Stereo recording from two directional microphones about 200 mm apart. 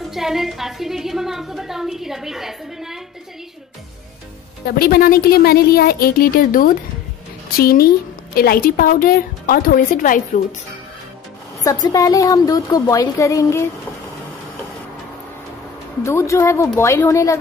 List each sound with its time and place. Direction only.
0.1 s a woman's voice: centre (ahead or behind)
4.6 s speech: 50° left (ahead or behind)
11.6 s a woman's voice: 20° left (ahead or behind)
16.0 s a woman's voice: 15° left (ahead or behind)